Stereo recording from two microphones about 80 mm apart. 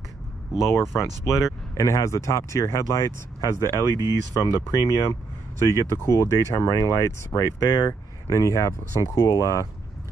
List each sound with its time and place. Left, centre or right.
0.6 s speech: left